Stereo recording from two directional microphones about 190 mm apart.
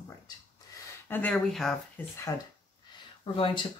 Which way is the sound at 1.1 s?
5° left (ahead or behind).